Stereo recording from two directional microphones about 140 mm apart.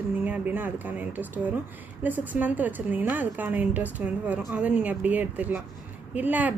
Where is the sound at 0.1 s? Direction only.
10° right (ahead or behind).